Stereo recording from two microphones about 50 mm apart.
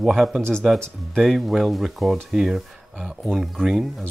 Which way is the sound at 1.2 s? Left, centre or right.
Centre.